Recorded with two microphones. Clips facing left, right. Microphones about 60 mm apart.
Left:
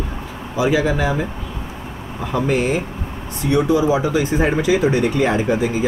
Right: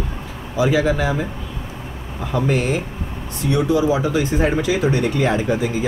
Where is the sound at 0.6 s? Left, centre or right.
Centre.